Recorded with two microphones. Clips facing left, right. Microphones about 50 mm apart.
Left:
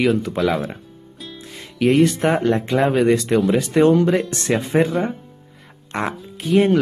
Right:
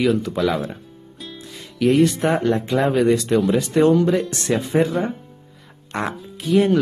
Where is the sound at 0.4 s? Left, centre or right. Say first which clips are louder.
Left 1 dB; centre.